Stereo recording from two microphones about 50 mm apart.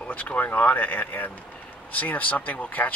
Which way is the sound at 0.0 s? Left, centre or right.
Left.